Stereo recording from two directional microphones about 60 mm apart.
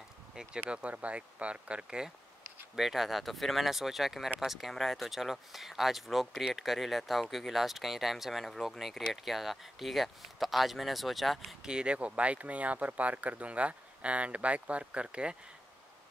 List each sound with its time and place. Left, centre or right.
0.4 s speech: centre
11.6 s speech: centre